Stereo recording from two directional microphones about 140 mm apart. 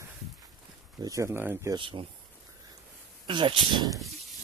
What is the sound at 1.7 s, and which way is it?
Speech, 40° right (ahead or behind).